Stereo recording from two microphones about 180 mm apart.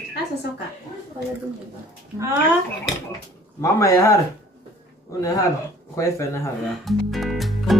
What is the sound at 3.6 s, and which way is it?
Speech, 15° left (ahead or behind).